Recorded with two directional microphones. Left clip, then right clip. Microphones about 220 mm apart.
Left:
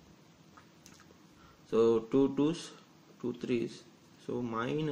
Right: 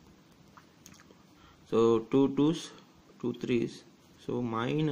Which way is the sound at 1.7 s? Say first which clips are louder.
Right 2 dB; 35° right (ahead or behind).